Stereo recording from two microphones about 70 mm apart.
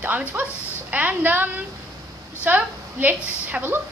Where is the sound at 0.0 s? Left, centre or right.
Right.